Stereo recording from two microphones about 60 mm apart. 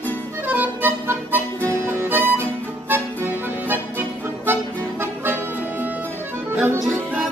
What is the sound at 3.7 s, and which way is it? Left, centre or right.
Music, right.